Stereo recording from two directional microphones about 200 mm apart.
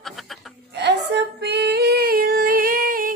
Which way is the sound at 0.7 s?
60° right (ahead or behind).